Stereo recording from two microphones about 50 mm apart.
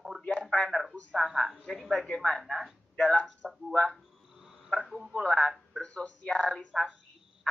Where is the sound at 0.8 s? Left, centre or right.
Centre.